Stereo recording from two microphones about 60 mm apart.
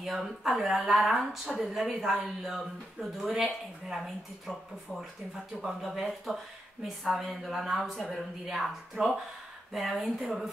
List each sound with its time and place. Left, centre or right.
0.0 s speech: centre
9.0 s speech: right
9.7 s speech: centre